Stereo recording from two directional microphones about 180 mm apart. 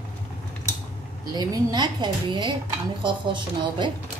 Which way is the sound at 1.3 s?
25° right (ahead or behind).